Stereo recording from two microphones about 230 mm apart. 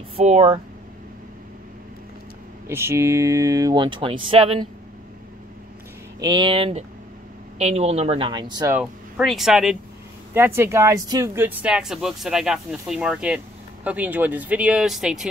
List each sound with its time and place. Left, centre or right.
0.1 s speech: right
2.7 s speech: centre
6.1 s speech: centre
8.7 s speech: centre